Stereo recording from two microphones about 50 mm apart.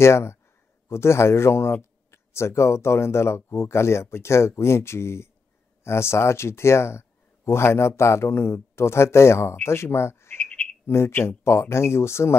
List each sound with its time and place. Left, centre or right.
0.0 s a man's voice: left
10.4 s frog: left
10.9 s a man's voice: left